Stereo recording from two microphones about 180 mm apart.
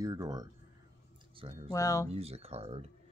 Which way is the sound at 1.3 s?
30° right (ahead or behind).